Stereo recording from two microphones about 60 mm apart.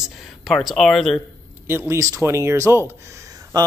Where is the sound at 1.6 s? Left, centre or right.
Right.